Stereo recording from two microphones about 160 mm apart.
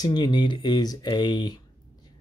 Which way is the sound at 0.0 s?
25° left (ahead or behind).